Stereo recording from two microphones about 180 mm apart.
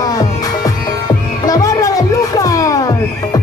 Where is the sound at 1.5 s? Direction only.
20° left (ahead or behind).